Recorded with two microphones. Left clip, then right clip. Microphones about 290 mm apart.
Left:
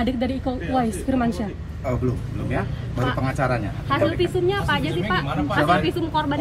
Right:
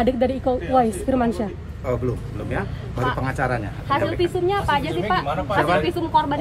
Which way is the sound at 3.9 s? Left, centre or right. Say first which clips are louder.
Even; right.